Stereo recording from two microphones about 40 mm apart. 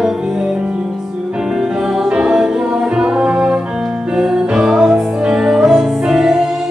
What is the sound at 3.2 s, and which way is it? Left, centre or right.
Music, right.